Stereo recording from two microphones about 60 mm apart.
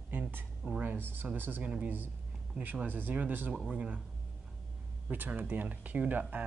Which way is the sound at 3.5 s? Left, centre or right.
Centre.